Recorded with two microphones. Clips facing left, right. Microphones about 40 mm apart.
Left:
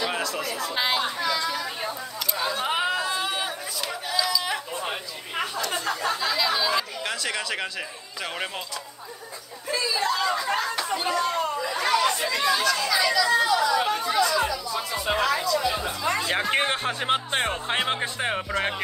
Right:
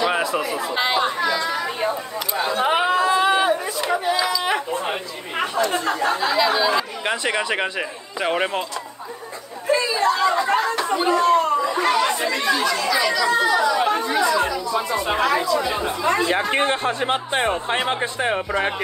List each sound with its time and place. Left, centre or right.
0.0 s speech: centre
1.8 s speech: right
2.4 s chatter: right
5.7 s speech: right
6.2 s speech: centre
9.7 s a sound: right
10.9 s chatter: right
13.0 s speech: centre
15.0 s speech: centre
15.2 s speech: centre
16.3 s speech: centre